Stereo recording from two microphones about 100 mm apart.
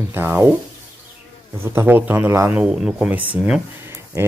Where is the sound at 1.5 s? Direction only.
25° right (ahead or behind).